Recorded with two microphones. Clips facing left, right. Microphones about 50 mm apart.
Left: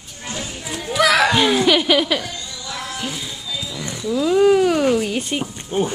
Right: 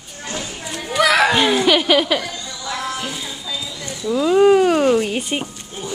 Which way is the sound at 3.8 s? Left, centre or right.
Centre.